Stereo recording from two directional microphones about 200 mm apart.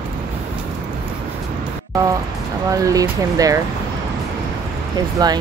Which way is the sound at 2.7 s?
15° right (ahead or behind).